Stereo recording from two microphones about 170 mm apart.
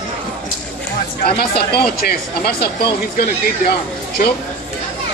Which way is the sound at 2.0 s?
70° left (ahead or behind).